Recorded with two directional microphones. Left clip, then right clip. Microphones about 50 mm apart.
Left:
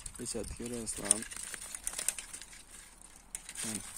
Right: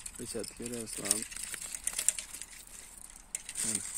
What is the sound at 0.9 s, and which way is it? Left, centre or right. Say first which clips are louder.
Speech: even; left.